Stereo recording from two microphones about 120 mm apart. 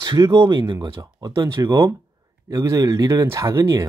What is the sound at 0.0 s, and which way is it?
Speech, 35° right (ahead or behind).